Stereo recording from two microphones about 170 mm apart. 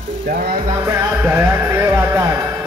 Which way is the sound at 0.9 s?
10° right (ahead or behind).